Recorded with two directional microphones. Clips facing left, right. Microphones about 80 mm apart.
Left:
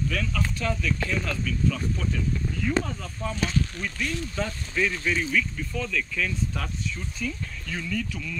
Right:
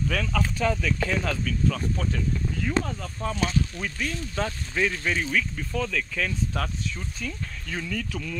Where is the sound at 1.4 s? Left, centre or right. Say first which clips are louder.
Even; right.